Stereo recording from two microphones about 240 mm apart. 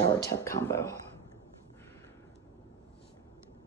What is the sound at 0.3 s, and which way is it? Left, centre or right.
Speech, centre.